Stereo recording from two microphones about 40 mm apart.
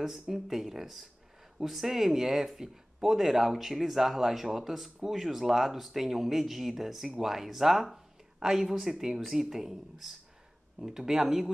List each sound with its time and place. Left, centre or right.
0.0 s speech: centre